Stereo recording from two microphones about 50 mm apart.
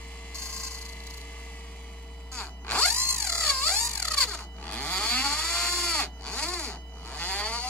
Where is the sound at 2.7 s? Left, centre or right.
Centre.